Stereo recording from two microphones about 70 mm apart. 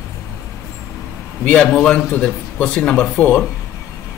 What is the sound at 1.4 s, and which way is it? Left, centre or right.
A man's voice, centre.